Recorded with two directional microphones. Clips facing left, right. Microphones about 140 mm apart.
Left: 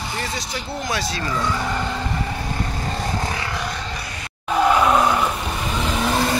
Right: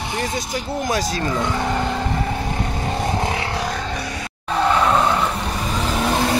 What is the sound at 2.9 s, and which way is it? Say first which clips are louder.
Vehicle: right 5 dB; 20° right (ahead or behind).